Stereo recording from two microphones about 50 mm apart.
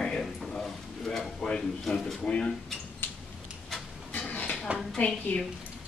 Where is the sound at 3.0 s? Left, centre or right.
Left.